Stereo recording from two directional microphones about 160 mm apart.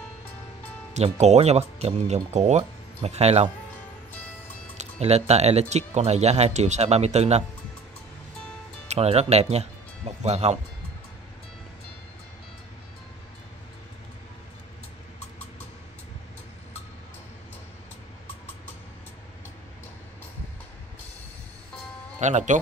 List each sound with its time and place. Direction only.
0.9 s speech: 45° right (ahead or behind)
4.7 s speech: 45° right (ahead or behind)
8.8 s speech: 40° right (ahead or behind)
22.2 s speech: 50° right (ahead or behind)